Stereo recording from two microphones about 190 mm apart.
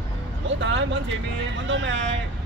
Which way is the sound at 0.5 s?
75° right (ahead or behind).